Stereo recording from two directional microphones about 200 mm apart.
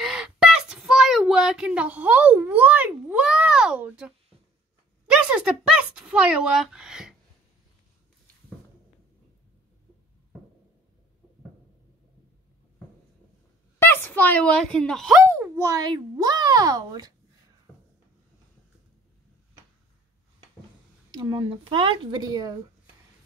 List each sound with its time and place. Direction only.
0.0 s a sound: 5° right (ahead or behind)
5.0 s speech: 5° right (ahead or behind)
13.7 s speech: 10° left (ahead or behind)
15.2 s a child's voice: 15° right (ahead or behind)
21.1 s a child's voice: 25° right (ahead or behind)